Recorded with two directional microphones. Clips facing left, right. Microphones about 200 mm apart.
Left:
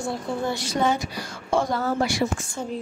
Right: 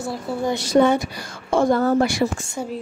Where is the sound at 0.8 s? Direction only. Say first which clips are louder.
Right 5 dB; 55° right (ahead or behind).